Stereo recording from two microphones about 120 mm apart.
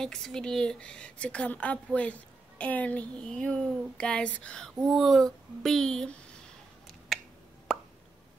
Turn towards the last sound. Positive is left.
turn(degrees=5)  # may be behind; listen again after turning